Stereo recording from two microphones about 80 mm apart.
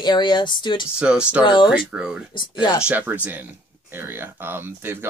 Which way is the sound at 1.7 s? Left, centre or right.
Centre.